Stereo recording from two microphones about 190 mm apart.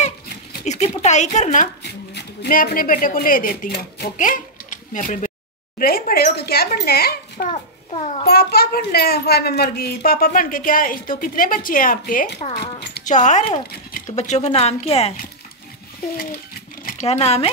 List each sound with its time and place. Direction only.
0.7 s speech: 35° left (ahead or behind)
1.8 s a woman's voice: 60° left (ahead or behind)
7.5 s a child's voice: 35° left (ahead or behind)
8.3 s a woman's voice: 55° left (ahead or behind)
12.4 s speech: 25° left (ahead or behind)
13.0 s speech: 40° left (ahead or behind)
17.1 s speech: 30° left (ahead or behind)